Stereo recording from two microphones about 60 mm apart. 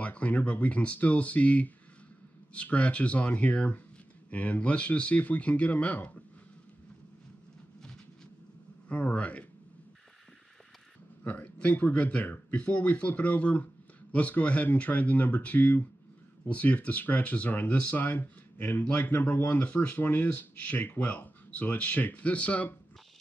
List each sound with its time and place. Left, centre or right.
0.0 s speech: left
8.8 s speech: left
11.2 s speech: left